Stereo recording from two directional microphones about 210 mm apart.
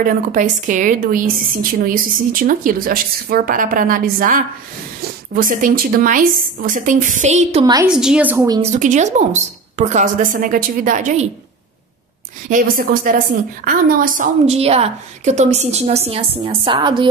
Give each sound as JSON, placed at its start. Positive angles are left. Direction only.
{"t": 0.0, "sound": "a woman's voice", "side_deg": -40}
{"t": 7.6, "sound": "a woman's voice", "side_deg": -15}
{"t": 7.9, "sound": "a woman's voice", "side_deg": -5}
{"t": 8.7, "sound": "a woman's voice", "side_deg": -35}
{"t": 12.4, "sound": "a woman's voice", "side_deg": -40}